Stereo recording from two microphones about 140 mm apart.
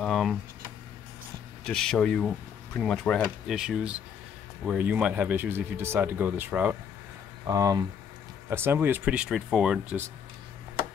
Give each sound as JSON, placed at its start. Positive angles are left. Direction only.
{"t": 0.0, "sound": "a sound", "side_deg": 0}
{"t": 1.6, "sound": "speech", "side_deg": 5}
{"t": 3.5, "sound": "speech", "side_deg": -5}
{"t": 7.4, "sound": "speech", "side_deg": -25}